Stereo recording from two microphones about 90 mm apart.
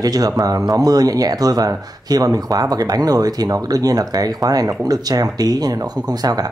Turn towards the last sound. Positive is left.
turn(degrees=-45)  # may be behind; listen again after turning